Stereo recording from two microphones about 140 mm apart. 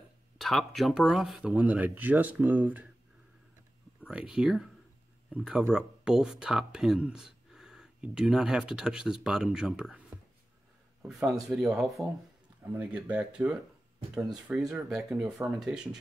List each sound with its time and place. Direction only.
0.4 s speech: centre (ahead or behind)
4.1 s speech: 5° right (ahead or behind)